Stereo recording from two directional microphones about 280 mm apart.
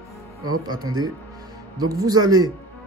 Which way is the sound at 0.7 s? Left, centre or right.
Centre.